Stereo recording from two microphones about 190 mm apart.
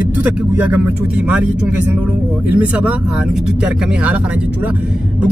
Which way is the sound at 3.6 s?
5° right (ahead or behind).